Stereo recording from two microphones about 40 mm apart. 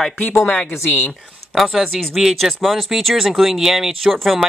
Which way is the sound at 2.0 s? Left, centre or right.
Centre.